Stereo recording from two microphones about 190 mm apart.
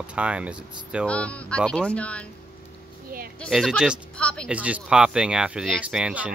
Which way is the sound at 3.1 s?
50° right (ahead or behind).